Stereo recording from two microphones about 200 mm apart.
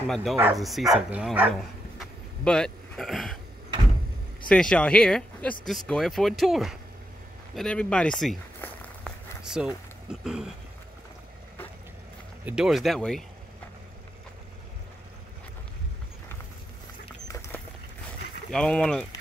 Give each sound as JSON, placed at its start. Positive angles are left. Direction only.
{"t": 0.1, "sound": "speech", "side_deg": 0}
{"t": 2.0, "sound": "a sound", "side_deg": 5}
{"t": 4.5, "sound": "speech", "side_deg": 5}
{"t": 7.5, "sound": "walk", "side_deg": 5}
{"t": 10.2, "sound": "speech", "side_deg": 0}
{"t": 12.4, "sound": "speech", "side_deg": -5}
{"t": 17.3, "sound": "a sound", "side_deg": 15}
{"t": 18.5, "sound": "speech", "side_deg": 5}